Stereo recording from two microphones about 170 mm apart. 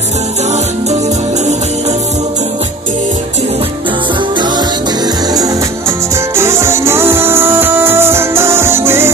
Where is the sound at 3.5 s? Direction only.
35° right (ahead or behind).